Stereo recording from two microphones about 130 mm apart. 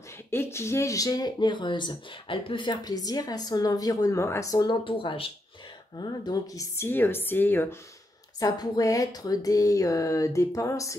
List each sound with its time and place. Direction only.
0.3 s speech: 20° left (ahead or behind); by 5.3 s 45° left (ahead or behind)
5.9 s a woman's voice: 35° left (ahead or behind); by 7.6 s 15° left (ahead or behind)
8.4 s speech: 30° left (ahead or behind)